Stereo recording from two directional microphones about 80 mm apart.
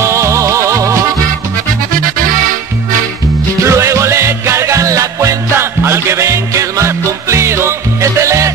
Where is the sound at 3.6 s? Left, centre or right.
Right.